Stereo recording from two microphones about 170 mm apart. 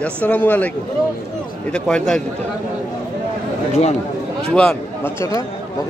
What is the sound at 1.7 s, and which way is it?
Speech, 5° left (ahead or behind).